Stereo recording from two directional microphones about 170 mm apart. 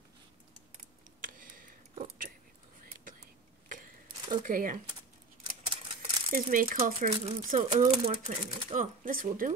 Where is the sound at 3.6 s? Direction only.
50° right (ahead or behind).